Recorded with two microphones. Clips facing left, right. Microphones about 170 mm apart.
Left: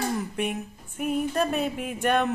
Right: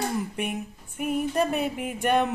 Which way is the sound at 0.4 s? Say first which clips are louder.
Left 1 dB; 10° right (ahead or behind).